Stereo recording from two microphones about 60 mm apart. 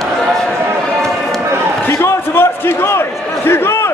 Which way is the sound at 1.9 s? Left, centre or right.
Left.